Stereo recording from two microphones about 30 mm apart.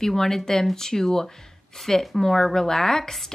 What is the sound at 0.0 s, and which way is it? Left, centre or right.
A woman's voice, centre.